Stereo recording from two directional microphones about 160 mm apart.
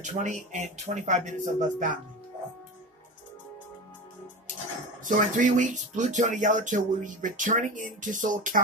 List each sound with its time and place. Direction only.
0.0 s speech: 50° right (ahead or behind)
5.0 s speech: 55° right (ahead or behind)